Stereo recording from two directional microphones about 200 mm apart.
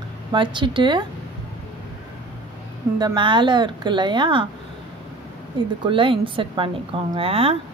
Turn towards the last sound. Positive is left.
turn(degrees=-30)  # may be behind; listen again after turning